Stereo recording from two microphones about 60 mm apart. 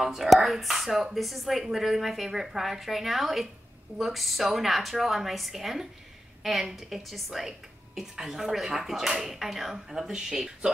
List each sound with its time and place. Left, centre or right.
0.0 s a woman's voice: centre